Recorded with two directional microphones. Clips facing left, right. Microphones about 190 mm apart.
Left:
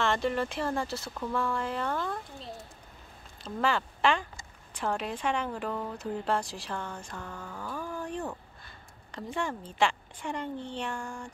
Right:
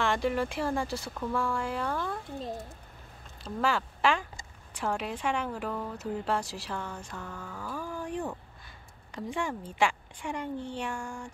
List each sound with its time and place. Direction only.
0.0 s a woman's voice: 10° right (ahead or behind)
2.3 s a child's voice: 40° right (ahead or behind)
3.4 s a woman's voice: 5° right (ahead or behind)
7.2 s a woman's voice: 5° left (ahead or behind); by 11.2 s 10° right (ahead or behind)